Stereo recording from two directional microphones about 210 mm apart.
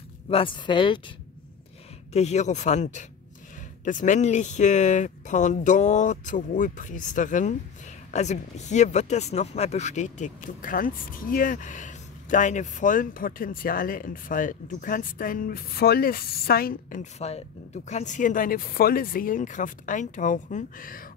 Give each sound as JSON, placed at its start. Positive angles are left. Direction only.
{"t": 0.3, "sound": "speech", "side_deg": 25}
{"t": 2.1, "sound": "speech", "side_deg": 30}